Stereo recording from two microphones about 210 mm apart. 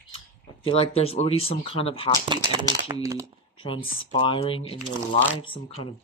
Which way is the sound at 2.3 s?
20° right (ahead or behind).